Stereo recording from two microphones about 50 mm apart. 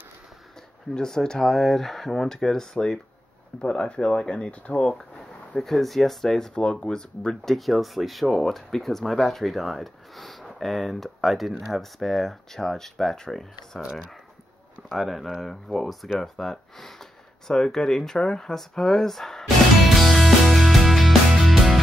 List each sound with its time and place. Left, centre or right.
0.9 s speech: centre
5.6 s speech: centre
7.5 s speech: centre
14.9 s speech: centre
20.0 s music: centre